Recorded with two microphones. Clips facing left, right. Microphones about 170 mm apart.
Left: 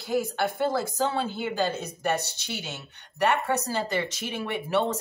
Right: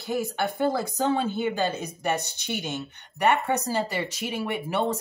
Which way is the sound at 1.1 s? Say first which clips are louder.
Right 4 dB; 15° right (ahead or behind).